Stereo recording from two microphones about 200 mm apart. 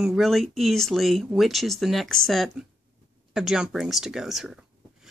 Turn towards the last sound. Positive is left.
turn(degrees=0)  # may be behind; listen again after turning